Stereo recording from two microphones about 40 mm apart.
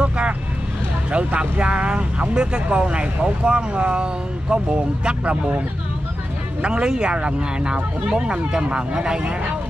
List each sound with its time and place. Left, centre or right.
1.1 s speech: right
6.6 s speech: right